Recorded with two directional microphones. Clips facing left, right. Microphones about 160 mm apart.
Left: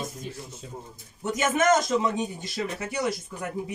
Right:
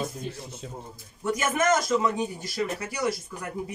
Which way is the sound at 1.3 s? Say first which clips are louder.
Left 2 dB; 20° left (ahead or behind).